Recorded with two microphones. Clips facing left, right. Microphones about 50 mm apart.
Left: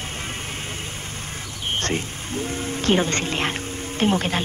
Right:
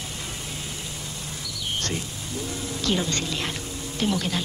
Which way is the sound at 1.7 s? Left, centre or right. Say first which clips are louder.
Left 5 dB; left.